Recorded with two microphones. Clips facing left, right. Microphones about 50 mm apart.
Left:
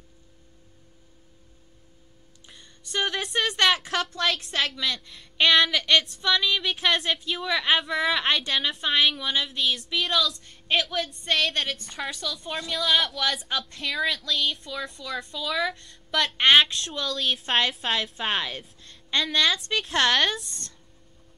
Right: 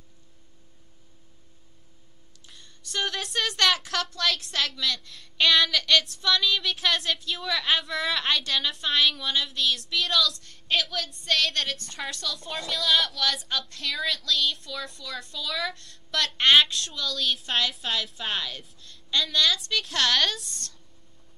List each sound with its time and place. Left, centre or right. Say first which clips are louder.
2.4 s a woman's voice: even; centre
7.2 s a woman's voice: left 2 dB; left
7.5 s a woman's voice: left 3 dB; centre
17.5 s a woman's voice: left 3 dB; left
18.8 s a sound: even; left
19.4 s a woman's voice: left 1 dB; left
20.2 s a woman's voice: left 2 dB; centre